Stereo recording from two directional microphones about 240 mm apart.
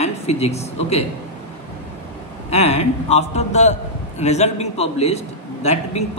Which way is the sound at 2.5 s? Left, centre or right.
Left.